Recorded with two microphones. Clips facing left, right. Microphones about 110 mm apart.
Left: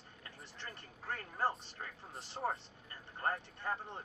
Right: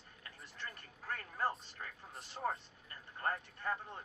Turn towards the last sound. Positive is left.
turn(degrees=25)  # may be behind; listen again after turning